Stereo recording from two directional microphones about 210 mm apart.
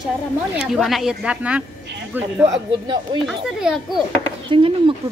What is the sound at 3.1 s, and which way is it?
Speech, 20° right (ahead or behind).